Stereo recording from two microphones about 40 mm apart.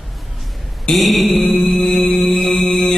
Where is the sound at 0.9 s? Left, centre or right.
Centre.